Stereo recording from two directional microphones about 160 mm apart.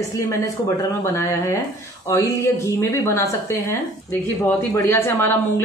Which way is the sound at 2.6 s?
20° left (ahead or behind).